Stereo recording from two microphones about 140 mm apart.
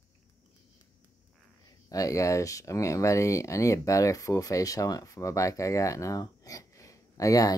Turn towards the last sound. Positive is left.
turn(degrees=25)  # may be behind; listen again after turning